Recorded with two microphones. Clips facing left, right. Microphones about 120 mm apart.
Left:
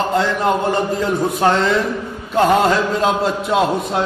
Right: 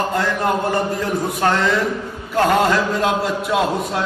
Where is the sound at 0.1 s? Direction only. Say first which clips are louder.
Left 3 dB; 20° left (ahead or behind).